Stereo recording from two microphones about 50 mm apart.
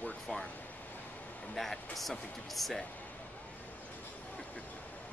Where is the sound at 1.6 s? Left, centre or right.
Centre.